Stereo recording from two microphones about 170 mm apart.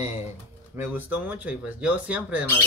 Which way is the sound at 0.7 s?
10° right (ahead or behind).